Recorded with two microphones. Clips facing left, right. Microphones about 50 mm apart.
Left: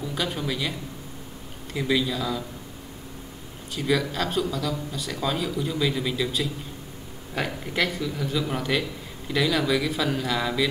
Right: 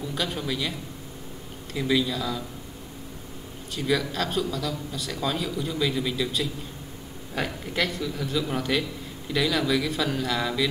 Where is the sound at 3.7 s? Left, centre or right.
Centre.